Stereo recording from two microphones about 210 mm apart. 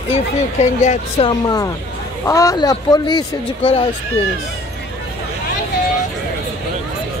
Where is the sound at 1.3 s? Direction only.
15° left (ahead or behind).